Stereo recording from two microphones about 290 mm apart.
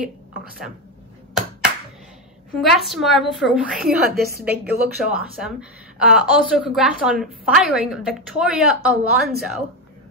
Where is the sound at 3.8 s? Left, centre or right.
Right.